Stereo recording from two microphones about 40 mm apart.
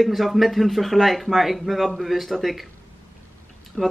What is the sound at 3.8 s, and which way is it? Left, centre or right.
Speech, centre.